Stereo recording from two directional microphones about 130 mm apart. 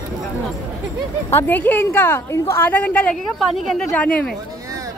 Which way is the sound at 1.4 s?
15° left (ahead or behind).